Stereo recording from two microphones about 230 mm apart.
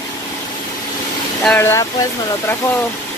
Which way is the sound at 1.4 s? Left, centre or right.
Centre.